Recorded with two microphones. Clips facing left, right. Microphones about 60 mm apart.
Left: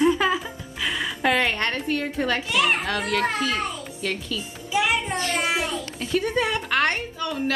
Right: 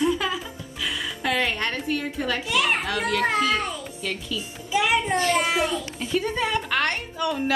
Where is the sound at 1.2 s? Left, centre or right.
Centre.